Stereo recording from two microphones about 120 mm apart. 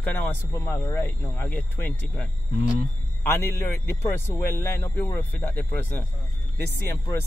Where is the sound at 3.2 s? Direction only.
25° left (ahead or behind).